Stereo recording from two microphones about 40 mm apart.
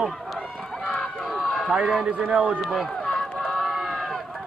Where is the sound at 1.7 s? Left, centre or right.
Centre.